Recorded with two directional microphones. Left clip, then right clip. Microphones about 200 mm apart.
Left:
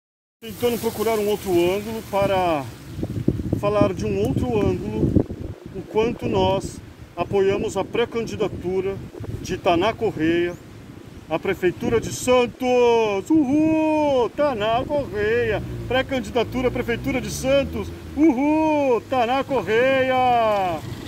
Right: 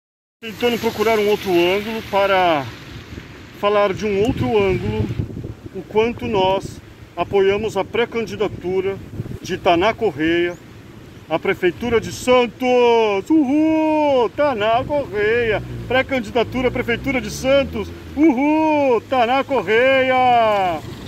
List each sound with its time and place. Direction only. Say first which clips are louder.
0.8 s speech: right 5 dB; 5° right (ahead or behind)
3.6 s speech: right 4 dB; 15° right (ahead or behind)
5.9 s speech: right 3 dB; 20° right (ahead or behind)
18.2 s speech: right 3 dB; 20° right (ahead or behind)